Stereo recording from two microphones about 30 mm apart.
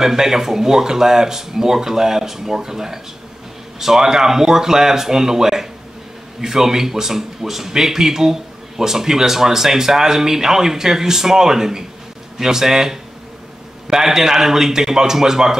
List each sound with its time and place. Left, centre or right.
0.0 s speech: centre